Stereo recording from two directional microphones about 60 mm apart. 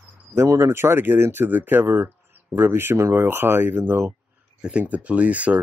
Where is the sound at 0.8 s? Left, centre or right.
Right.